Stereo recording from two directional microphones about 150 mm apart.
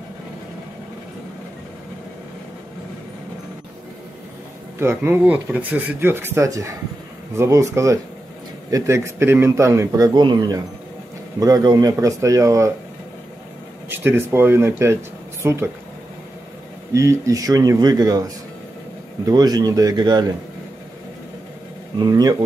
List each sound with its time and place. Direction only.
4.7 s a man's voice: 15° right (ahead or behind)
13.8 s speech: 15° right (ahead or behind)
16.9 s a man's voice: 20° right (ahead or behind)
21.9 s a man's voice: 25° right (ahead or behind)